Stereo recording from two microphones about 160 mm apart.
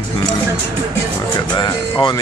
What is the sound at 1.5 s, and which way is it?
Speech, 30° left (ahead or behind).